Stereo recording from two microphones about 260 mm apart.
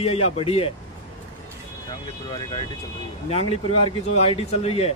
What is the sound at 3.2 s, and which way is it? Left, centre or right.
Speech, left.